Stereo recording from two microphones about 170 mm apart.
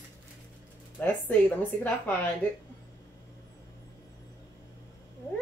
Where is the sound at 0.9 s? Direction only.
10° left (ahead or behind).